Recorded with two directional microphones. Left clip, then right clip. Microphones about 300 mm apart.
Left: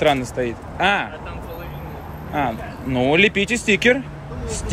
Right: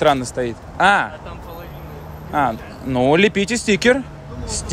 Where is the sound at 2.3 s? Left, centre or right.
Centre.